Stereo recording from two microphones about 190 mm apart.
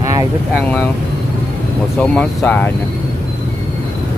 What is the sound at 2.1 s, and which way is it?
Speech, 5° left (ahead or behind).